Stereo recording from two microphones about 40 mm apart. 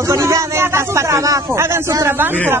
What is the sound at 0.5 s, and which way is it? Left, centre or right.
Speech, right.